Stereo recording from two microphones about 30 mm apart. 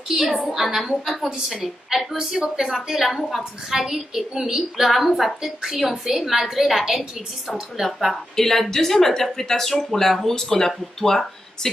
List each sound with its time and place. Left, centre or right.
0.1 s a woman's voice: centre
2.1 s a woman's voice: right
2.5 s a woman's voice: centre
8.1 s speech: centre